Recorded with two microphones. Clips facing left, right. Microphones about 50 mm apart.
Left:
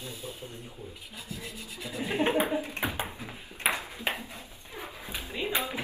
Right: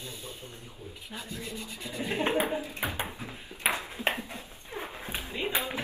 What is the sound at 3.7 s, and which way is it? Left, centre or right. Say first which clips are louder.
Ping: right 2 dB; right.